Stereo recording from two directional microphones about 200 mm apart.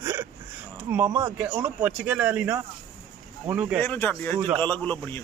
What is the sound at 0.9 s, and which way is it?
Speech, 10° right (ahead or behind).